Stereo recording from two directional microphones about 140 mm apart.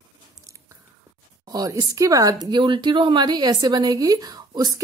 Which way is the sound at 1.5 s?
25° right (ahead or behind).